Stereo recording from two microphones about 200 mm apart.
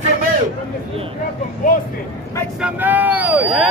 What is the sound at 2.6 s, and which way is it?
Vehicle, 5° right (ahead or behind).